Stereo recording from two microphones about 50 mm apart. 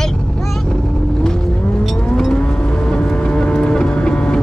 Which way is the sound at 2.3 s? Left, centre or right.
Left.